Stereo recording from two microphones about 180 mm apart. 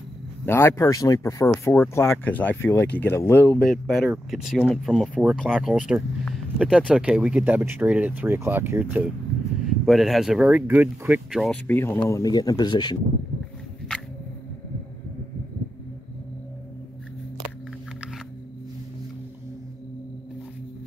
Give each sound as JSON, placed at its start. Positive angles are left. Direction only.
{"t": 0.5, "sound": "speech", "side_deg": 15}
{"t": 11.6, "sound": "speech", "side_deg": 10}